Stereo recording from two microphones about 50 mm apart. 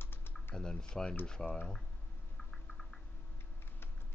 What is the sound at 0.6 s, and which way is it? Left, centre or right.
Speech, centre.